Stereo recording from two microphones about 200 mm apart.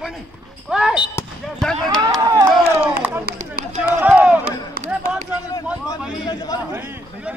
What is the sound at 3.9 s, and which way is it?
Run, 10° right (ahead or behind).